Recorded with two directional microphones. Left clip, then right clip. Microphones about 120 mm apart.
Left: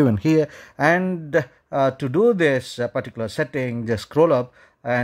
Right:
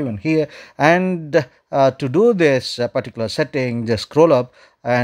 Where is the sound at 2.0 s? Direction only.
5° right (ahead or behind).